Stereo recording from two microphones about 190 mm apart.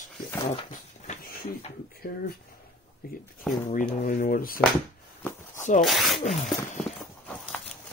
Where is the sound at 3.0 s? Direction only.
50° left (ahead or behind).